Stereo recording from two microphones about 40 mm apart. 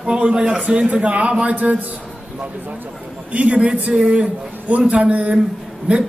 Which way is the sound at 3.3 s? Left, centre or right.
Right.